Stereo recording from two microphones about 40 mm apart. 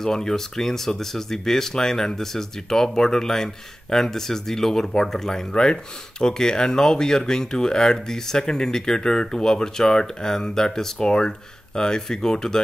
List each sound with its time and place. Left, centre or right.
0.0 s speech: centre